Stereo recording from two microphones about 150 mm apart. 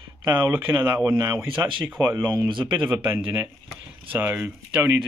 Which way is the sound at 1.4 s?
35° right (ahead or behind).